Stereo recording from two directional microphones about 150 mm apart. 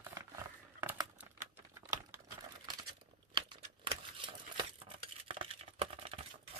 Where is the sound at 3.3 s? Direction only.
35° right (ahead or behind).